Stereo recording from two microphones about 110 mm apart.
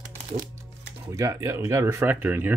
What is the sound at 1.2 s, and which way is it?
Speech, 30° right (ahead or behind).